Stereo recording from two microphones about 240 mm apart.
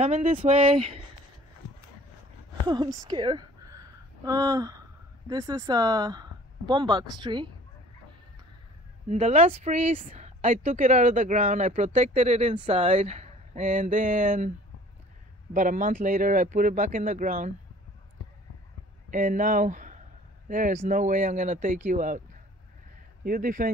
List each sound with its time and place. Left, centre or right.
0.0 s speech: right
2.6 s a woman's voice: centre
9.1 s speech: right
15.5 s speech: right
19.0 s speech: right
23.2 s speech: right